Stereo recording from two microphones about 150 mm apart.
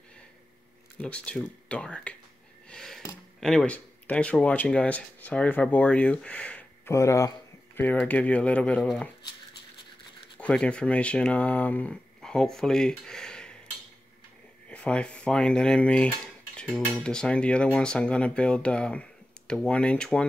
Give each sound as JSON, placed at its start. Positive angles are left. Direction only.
{"t": 0.9, "sound": "speech", "side_deg": 5}
{"t": 2.7, "sound": "a sound", "side_deg": 5}
{"t": 3.3, "sound": "speech", "side_deg": 5}
{"t": 6.9, "sound": "speech", "side_deg": 20}
{"t": 10.4, "sound": "speech", "side_deg": 5}
{"t": 14.7, "sound": "cutlery", "side_deg": 10}
{"t": 16.9, "sound": "speech", "side_deg": 5}